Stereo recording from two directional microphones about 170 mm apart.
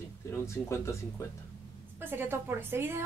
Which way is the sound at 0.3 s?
15° left (ahead or behind).